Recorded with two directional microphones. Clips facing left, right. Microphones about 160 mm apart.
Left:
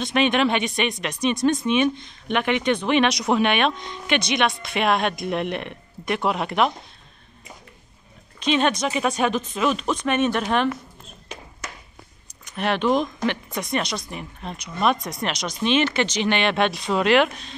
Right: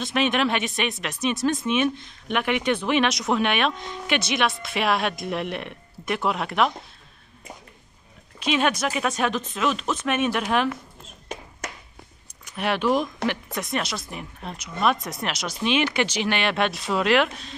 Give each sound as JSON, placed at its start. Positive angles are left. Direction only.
{"t": 0.0, "sound": "speech", "side_deg": 0}
{"t": 8.4, "sound": "speech", "side_deg": -5}
{"t": 12.4, "sound": "speech", "side_deg": -10}